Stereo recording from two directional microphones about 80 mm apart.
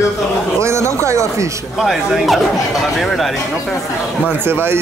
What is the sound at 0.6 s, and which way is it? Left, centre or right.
Speech, right.